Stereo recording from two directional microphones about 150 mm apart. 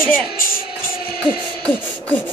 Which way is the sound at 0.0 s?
70° left (ahead or behind).